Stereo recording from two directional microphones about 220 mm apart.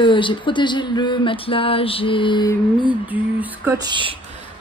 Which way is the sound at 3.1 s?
5° right (ahead or behind).